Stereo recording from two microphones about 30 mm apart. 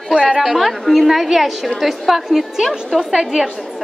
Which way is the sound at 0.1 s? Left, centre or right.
Right.